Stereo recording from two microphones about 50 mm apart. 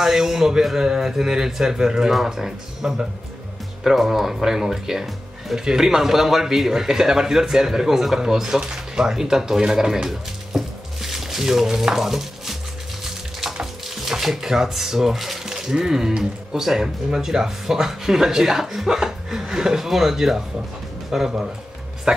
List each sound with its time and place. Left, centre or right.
0.0 s speech: centre
10.0 s music: centre
13.0 s speech: centre